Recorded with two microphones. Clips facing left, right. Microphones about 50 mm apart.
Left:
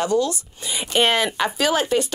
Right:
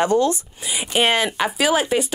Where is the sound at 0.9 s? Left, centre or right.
Centre.